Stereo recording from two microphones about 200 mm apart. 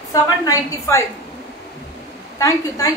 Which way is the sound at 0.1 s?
15° left (ahead or behind).